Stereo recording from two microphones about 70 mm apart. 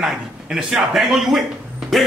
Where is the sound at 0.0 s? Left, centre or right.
Centre.